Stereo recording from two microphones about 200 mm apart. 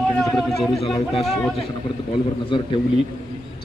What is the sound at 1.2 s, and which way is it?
Speech, centre (ahead or behind).